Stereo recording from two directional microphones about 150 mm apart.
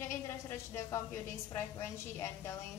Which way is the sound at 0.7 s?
20° left (ahead or behind).